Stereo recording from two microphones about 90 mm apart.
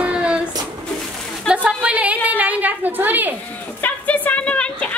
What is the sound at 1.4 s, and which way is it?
A woman's voice, 10° right (ahead or behind).